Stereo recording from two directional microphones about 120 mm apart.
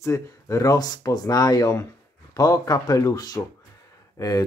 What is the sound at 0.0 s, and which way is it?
Speech, 25° left (ahead or behind).